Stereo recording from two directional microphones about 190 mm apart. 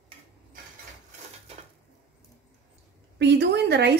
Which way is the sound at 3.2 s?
65° right (ahead or behind).